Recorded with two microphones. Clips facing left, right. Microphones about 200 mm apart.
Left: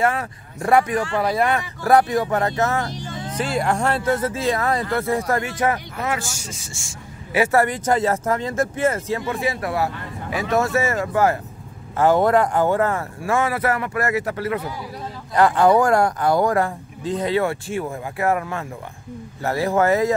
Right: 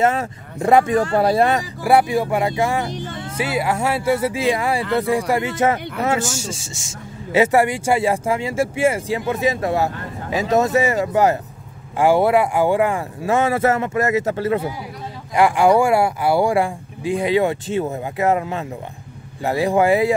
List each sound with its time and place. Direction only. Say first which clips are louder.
0.0 s a man's voice: right 3 dB; 20° right (ahead or behind)
0.9 s speech: right 5 dB; 40° right (ahead or behind)
1.8 s speech: even; 10° right (ahead or behind)
2.9 s speech: right 3 dB; 55° right (ahead or behind)
3.3 s a man's voice: right 1 dB; 5° right (ahead or behind); by 14.7 s 25° right (ahead or behind)
15.3 s speech: right 1 dB; 10° right (ahead or behind)